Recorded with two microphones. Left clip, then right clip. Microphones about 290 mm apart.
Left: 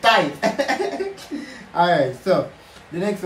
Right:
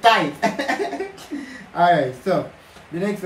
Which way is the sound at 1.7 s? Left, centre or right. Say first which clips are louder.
Right 1 dB; centre.